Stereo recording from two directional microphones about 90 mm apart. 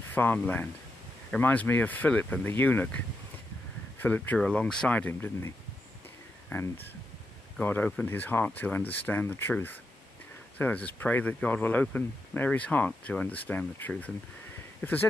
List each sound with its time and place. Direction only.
0.1 s speech: 20° left (ahead or behind)
4.0 s speech: 20° left (ahead or behind)
4.4 s speech: 10° left (ahead or behind)
6.5 s speech: 25° left (ahead or behind)